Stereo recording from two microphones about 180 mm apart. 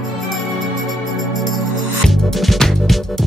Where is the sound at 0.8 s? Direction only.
Centre (ahead or behind).